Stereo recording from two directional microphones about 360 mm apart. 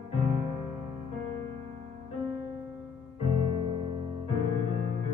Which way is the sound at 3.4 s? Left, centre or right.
Centre.